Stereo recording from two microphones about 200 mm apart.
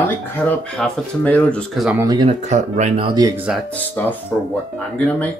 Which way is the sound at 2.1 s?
30° right (ahead or behind).